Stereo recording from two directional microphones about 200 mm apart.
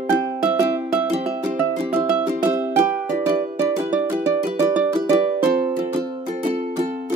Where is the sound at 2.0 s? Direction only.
10° right (ahead or behind).